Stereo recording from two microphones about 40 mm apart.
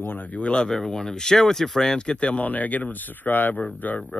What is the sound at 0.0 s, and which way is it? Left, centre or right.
Speech, left.